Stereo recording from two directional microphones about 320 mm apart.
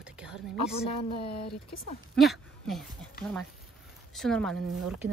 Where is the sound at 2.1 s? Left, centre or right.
Centre.